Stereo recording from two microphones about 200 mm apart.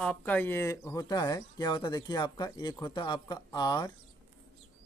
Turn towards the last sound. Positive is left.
turn(degrees=20)  # may be behind; listen again after turning